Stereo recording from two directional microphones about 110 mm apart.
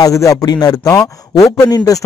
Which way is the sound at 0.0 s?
30° left (ahead or behind).